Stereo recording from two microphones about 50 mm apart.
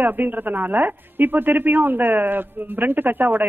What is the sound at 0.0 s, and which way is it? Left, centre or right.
A woman's voice, right.